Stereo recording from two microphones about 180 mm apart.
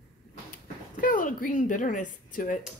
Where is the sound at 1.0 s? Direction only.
45° left (ahead or behind).